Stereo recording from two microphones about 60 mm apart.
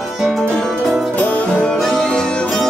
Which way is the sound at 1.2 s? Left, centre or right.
Left.